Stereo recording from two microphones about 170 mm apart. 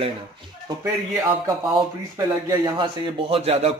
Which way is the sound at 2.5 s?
25° right (ahead or behind).